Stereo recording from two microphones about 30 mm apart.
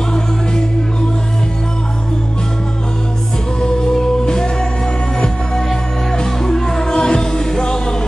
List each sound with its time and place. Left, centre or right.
3.6 s music: centre
6.1 s music: centre